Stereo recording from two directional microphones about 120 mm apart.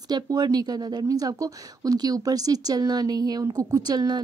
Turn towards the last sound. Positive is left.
turn(degrees=-35)  # may be behind; listen again after turning